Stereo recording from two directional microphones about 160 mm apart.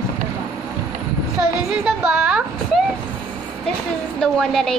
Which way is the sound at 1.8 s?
5° right (ahead or behind).